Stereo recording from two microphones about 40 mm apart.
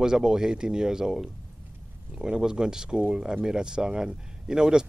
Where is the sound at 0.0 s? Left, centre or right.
Centre.